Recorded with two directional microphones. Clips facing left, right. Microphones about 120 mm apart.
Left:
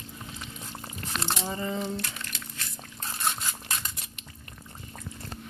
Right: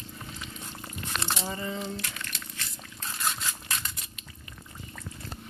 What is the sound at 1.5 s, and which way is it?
Speech, 25° left (ahead or behind).